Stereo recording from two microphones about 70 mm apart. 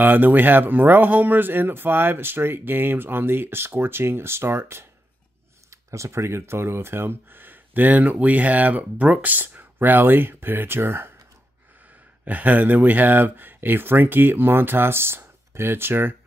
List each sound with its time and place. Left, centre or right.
0.0 s speech: right
12.3 s speech: right